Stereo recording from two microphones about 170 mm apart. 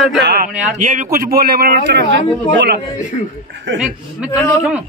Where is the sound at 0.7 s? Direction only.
50° right (ahead or behind).